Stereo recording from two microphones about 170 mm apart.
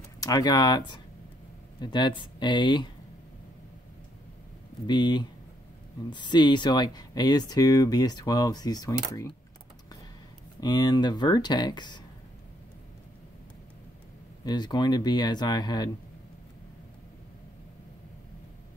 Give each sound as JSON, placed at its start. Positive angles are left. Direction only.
{"t": 0.2, "sound": "speech", "side_deg": 20}
{"t": 4.8, "sound": "speech", "side_deg": 25}
{"t": 10.6, "sound": "speech", "side_deg": 20}
{"t": 14.4, "sound": "speech", "side_deg": 25}